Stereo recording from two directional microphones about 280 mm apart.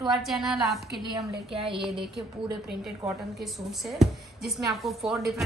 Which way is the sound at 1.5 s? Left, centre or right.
Centre.